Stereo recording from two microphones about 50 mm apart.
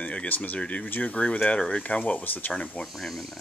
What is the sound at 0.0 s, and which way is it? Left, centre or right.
Speech, left.